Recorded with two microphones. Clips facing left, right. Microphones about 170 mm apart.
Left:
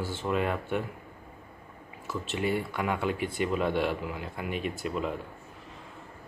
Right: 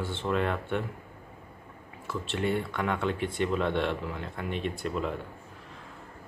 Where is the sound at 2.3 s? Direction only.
5° left (ahead or behind).